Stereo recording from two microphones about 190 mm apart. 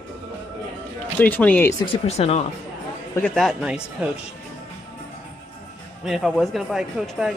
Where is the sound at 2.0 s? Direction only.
35° left (ahead or behind).